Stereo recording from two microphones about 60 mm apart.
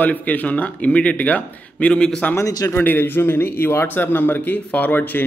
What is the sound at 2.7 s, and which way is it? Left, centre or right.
A man's voice, left.